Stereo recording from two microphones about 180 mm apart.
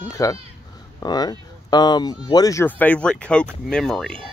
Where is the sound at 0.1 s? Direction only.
20° left (ahead or behind); by 4.3 s 5° left (ahead or behind).